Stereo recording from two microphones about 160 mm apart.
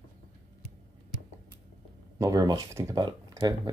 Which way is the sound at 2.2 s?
20° right (ahead or behind).